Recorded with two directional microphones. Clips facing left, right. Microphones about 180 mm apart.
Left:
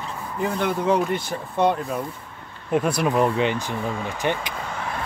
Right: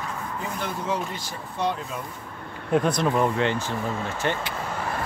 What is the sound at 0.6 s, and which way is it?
Speech, 60° left (ahead or behind).